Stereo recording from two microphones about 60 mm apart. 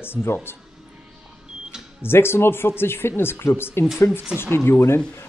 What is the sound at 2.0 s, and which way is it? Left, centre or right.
Speech, left.